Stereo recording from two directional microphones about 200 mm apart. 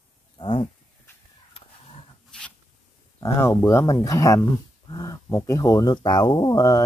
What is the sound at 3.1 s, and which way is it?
Speech, 15° left (ahead or behind).